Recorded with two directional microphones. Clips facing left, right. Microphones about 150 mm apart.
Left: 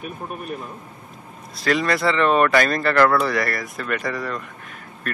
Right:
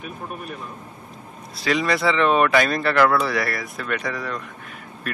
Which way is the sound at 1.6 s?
Centre (ahead or behind).